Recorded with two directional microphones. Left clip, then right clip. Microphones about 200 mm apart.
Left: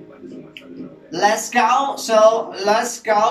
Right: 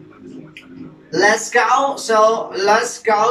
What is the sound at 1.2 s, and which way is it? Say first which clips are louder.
Speech: right 2 dB; 15° left (ahead or behind).